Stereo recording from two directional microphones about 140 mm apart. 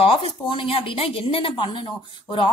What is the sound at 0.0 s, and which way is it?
A woman's voice, 40° left (ahead or behind).